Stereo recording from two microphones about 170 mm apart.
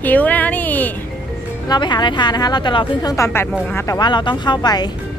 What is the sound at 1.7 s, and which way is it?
Speech, 25° left (ahead or behind).